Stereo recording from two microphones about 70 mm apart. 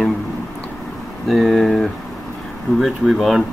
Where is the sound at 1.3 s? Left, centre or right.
Centre.